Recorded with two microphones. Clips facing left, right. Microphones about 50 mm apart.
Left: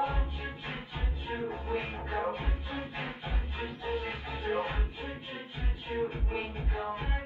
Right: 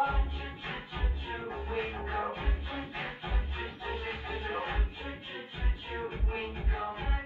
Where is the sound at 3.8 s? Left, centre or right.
Centre.